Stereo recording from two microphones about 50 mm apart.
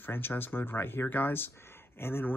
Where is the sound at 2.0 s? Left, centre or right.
Left.